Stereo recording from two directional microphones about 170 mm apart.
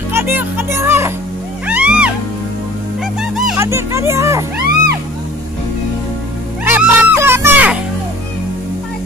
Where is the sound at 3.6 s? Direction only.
15° right (ahead or behind).